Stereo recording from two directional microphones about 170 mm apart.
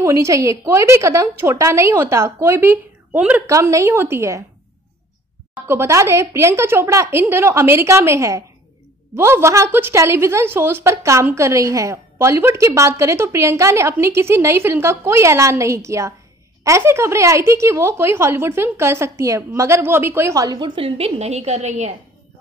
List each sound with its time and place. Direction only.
0.0 s a woman's voice: 20° right (ahead or behind)
5.5 s a woman's voice: 15° right (ahead or behind); by 21.9 s 40° right (ahead or behind)